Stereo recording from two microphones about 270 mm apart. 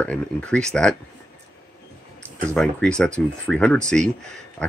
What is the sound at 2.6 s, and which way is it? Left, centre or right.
Speech, centre.